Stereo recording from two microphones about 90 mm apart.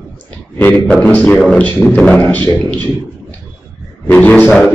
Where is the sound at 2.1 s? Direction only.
20° left (ahead or behind).